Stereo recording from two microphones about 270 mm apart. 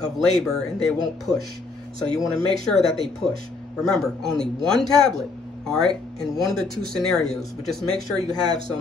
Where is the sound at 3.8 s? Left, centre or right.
Centre.